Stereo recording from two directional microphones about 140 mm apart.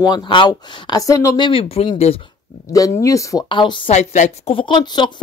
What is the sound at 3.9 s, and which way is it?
A woman's voice, 55° left (ahead or behind).